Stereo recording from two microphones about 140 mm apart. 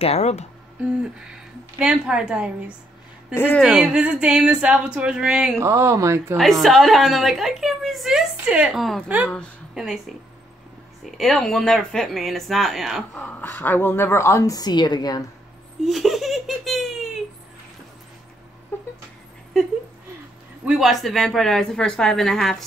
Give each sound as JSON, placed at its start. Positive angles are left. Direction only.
{"t": 0.0, "sound": "speech", "side_deg": 50}
{"t": 1.8, "sound": "speech", "side_deg": -5}
{"t": 3.3, "sound": "speech", "side_deg": 15}
{"t": 3.6, "sound": "speech", "side_deg": -5}
{"t": 5.6, "sound": "speech", "side_deg": -20}
{"t": 6.3, "sound": "a woman's voice", "side_deg": 0}
{"t": 11.1, "sound": "a woman's voice", "side_deg": 0}
{"t": 13.1, "sound": "a woman's voice", "side_deg": 15}
{"t": 15.8, "sound": "speech", "side_deg": 0}
{"t": 18.7, "sound": "cat", "side_deg": 15}
{"t": 20.6, "sound": "a woman's voice", "side_deg": 0}